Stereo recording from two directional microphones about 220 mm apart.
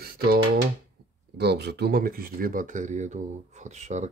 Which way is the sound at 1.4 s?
50° right (ahead or behind).